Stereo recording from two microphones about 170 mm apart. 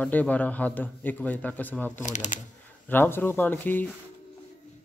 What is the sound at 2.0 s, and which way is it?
Speech, 45° left (ahead or behind).